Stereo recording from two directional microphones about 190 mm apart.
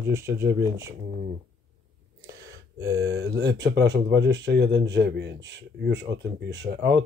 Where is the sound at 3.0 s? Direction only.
55° right (ahead or behind).